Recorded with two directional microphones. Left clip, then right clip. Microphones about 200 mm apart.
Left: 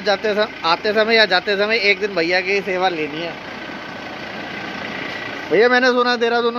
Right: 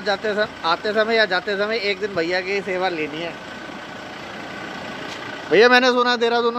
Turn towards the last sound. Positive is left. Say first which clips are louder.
# left 1 dB
turn(degrees=-10)  # may be behind; listen again after turning